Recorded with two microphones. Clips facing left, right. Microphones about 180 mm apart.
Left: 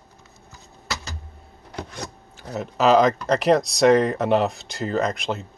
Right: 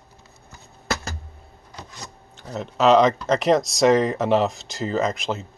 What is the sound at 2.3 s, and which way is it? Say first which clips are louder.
Speech: even; 5° left (ahead or behind).